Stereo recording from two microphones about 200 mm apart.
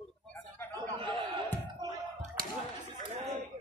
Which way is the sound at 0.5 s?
10° left (ahead or behind).